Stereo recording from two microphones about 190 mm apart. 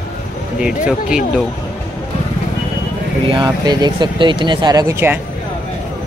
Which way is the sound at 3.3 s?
20° right (ahead or behind).